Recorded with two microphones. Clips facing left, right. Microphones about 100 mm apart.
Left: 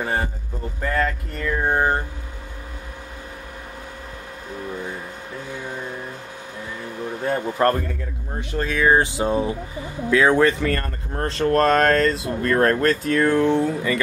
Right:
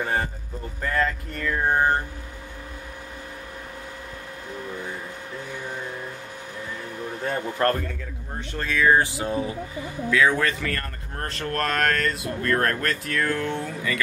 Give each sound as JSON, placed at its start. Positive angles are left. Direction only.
{"t": 0.0, "sound": "a man's voice", "side_deg": 5}
{"t": 0.8, "sound": "a sound", "side_deg": 5}
{"t": 7.2, "sound": "a man's voice", "side_deg": 15}